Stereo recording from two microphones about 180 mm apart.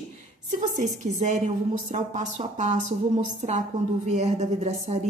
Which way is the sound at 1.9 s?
40° right (ahead or behind).